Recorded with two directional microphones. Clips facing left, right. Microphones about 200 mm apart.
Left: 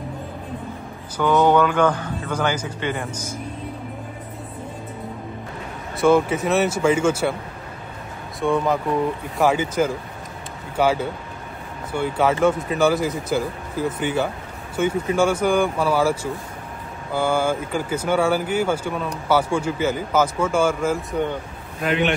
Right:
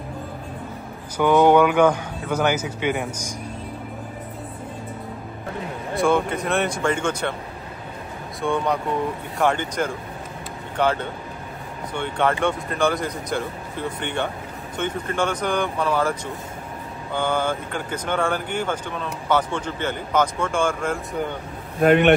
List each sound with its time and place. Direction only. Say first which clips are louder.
1.1 s a man's voice: right 2 dB; 10° right (ahead or behind)
5.9 s speech: left 4 dB; 5° left (ahead or behind)
8.4 s speech: left 3 dB; centre (ahead or behind)
21.8 s speech: right 6 dB; 50° right (ahead or behind)